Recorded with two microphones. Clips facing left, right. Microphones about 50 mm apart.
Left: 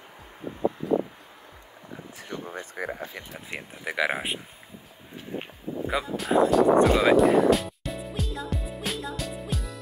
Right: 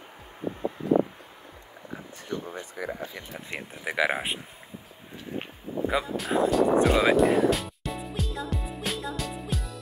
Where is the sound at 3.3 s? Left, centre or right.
Centre.